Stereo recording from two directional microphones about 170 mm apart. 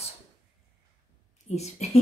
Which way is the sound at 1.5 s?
40° left (ahead or behind).